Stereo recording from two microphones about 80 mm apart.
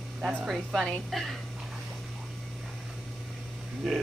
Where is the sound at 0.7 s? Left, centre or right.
Centre.